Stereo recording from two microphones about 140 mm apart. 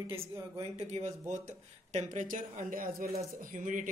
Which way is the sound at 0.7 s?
50° right (ahead or behind).